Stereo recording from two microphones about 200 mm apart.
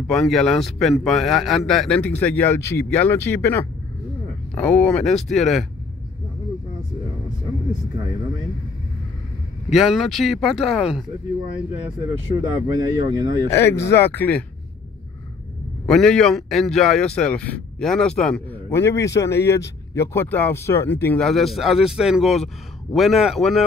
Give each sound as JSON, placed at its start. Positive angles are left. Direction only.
{"t": 0.0, "sound": "speech", "side_deg": 5}
{"t": 9.7, "sound": "speech", "side_deg": 0}
{"t": 12.4, "sound": "speech", "side_deg": -15}
{"t": 13.5, "sound": "speech", "side_deg": 15}
{"t": 15.9, "sound": "speech", "side_deg": 0}